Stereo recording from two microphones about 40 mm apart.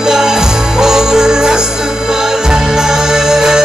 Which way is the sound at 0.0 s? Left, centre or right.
Centre.